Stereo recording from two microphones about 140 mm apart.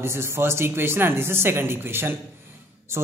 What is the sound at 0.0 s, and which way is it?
Speech, 20° right (ahead or behind).